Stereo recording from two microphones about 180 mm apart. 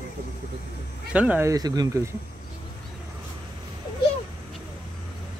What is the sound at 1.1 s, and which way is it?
Speech, 10° right (ahead or behind).